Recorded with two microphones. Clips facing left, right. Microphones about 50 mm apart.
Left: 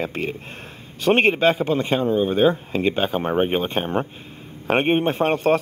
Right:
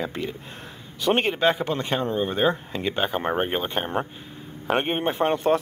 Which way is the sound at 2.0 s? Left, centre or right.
Centre.